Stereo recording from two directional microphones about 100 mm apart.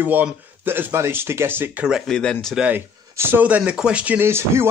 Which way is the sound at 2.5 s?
15° right (ahead or behind).